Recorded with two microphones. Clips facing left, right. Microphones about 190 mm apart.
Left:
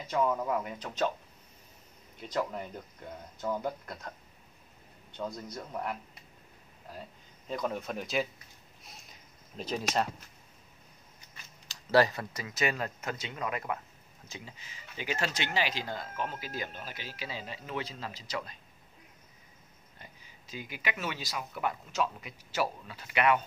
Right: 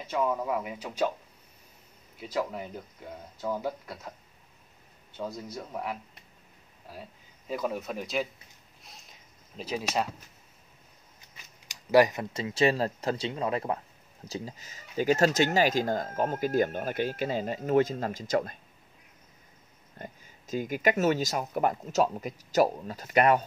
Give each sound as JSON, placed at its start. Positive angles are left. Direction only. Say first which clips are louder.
{"t": 0.1, "sound": "speech", "louder": "right 1 dB", "side_deg": -5}
{"t": 2.1, "sound": "speech", "louder": "right 2 dB", "side_deg": -5}
{"t": 5.1, "sound": "speech", "louder": "right 2 dB", "side_deg": -5}
{"t": 7.4, "sound": "speech", "louder": "right 2 dB", "side_deg": -5}
{"t": 8.8, "sound": "a sound", "louder": "right 1 dB", "side_deg": 0}
{"t": 11.3, "sound": "speech", "louder": "even", "side_deg": -15}
{"t": 20.0, "sound": "speech", "louder": "right 11 dB", "side_deg": -45}